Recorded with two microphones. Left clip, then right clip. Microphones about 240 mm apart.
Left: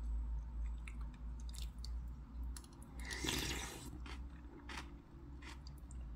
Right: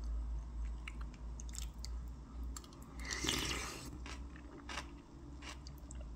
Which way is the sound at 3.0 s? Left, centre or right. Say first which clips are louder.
Right 3 dB; centre.